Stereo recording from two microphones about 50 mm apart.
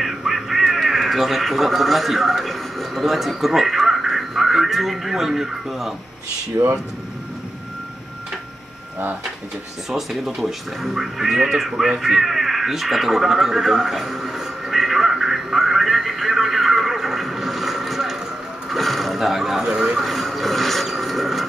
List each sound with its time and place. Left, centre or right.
0.0 s speech: centre
6.5 s speech: right
9.8 s speech: centre
11.8 s a sound: centre
18.7 s vehicle: centre
20.0 s television: centre